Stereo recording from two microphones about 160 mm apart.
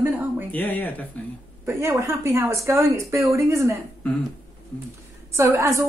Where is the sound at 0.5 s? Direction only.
10° left (ahead or behind).